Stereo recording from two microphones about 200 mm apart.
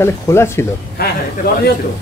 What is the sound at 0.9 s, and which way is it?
Speech, 50° left (ahead or behind).